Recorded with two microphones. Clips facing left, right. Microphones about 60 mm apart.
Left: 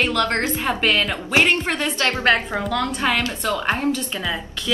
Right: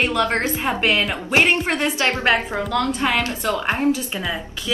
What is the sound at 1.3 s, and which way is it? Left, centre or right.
A woman's voice, right.